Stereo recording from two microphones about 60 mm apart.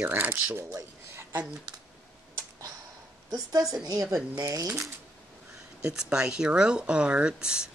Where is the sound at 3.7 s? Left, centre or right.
Right.